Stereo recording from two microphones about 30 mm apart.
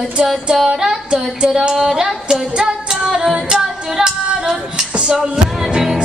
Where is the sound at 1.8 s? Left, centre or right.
Centre.